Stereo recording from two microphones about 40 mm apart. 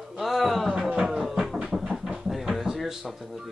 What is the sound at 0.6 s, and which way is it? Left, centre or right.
Music, centre.